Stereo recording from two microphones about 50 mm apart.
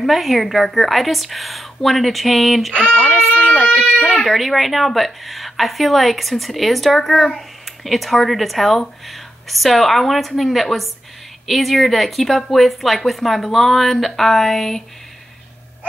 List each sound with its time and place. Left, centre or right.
0.0 s speech: centre
3.0 s baby cry: centre
3.4 s baby cry: centre
3.8 s speech: centre